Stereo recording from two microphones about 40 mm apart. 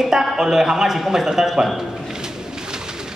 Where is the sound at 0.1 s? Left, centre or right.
Centre.